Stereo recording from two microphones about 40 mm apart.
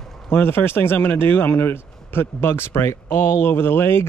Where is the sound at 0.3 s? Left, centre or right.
Left.